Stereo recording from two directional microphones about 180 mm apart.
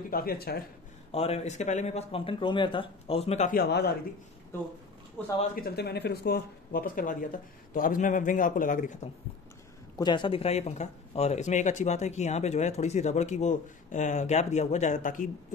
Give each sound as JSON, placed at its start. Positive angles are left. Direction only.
{"t": 0.1, "sound": "speech", "side_deg": 55}
{"t": 1.1, "sound": "speech", "side_deg": 35}
{"t": 3.5, "sound": "speech", "side_deg": 65}
{"t": 5.2, "sound": "speech", "side_deg": 5}
{"t": 5.5, "sound": "a man's voice", "side_deg": 55}
{"t": 9.9, "sound": "speech", "side_deg": 25}